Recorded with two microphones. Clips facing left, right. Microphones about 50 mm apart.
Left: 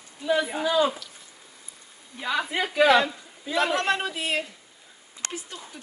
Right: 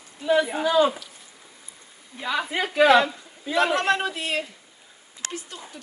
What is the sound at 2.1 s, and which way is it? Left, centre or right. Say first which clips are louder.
Speech: right 1 dB; centre.